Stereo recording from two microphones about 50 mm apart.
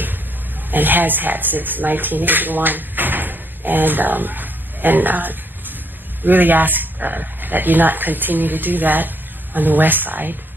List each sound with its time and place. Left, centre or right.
0.7 s speech: right